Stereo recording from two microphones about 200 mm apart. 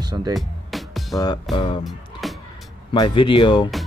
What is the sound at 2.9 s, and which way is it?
Speech, 25° left (ahead or behind).